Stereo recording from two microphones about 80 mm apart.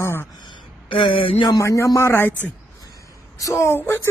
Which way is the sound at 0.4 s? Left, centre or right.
Left.